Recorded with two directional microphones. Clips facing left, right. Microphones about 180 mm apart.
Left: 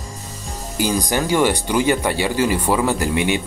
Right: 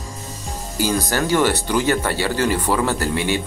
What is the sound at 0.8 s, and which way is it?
Speech, 15° left (ahead or behind).